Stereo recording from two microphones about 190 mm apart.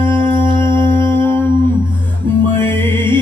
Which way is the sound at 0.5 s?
25° right (ahead or behind).